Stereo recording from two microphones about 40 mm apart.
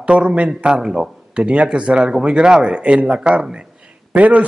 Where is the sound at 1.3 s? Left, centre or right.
Right.